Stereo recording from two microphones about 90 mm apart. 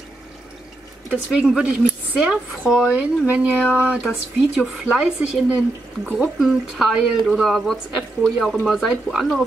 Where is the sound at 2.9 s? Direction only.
15° right (ahead or behind).